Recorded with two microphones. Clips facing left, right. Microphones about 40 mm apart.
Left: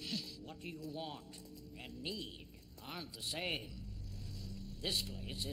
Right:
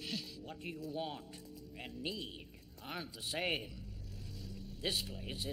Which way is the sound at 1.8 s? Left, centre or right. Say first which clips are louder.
Right 2 dB; centre.